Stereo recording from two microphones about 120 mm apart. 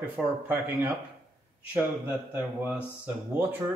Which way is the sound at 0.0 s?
15° right (ahead or behind).